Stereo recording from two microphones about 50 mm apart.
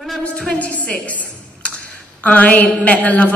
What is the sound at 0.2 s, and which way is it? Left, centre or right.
A woman's voice, left.